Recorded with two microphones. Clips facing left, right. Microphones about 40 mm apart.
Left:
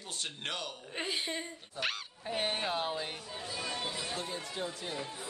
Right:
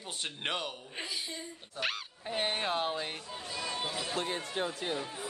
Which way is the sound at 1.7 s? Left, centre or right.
Centre.